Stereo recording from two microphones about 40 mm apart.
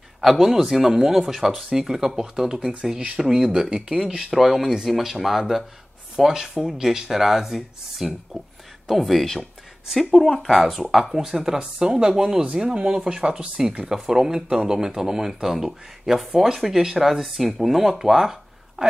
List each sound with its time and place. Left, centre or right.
0.2 s speech: centre
11.2 s speech: centre